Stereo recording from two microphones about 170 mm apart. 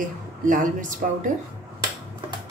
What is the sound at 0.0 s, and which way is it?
Speech, 50° right (ahead or behind).